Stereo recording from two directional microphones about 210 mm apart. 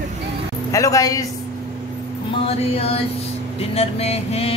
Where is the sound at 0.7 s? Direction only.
15° left (ahead or behind).